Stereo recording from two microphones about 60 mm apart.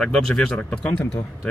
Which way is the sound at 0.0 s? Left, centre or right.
Centre.